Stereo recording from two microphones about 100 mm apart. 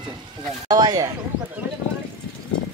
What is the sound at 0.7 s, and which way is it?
Speech, 40° right (ahead or behind).